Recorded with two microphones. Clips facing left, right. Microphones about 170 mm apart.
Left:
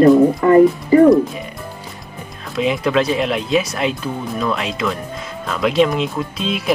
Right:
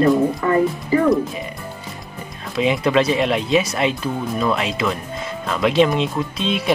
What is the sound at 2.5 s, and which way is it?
Speech, centre (ahead or behind).